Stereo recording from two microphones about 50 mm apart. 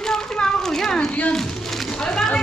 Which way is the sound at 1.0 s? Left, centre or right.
Left.